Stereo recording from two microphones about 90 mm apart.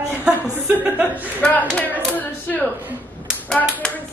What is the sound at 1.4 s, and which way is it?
Speech, 20° left (ahead or behind).